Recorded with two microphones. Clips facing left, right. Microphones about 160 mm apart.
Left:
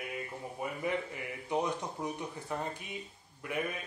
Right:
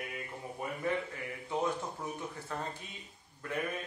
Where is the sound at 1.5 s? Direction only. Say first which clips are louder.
Left 1 dB; 15° left (ahead or behind).